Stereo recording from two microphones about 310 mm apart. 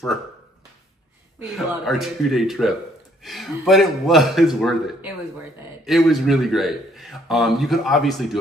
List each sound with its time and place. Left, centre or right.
1.4 s a man's voice: centre